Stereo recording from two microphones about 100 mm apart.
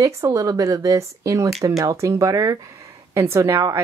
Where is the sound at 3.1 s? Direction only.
25° right (ahead or behind).